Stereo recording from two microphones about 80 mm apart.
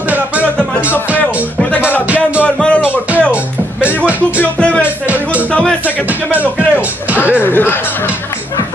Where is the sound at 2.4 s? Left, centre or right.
Centre.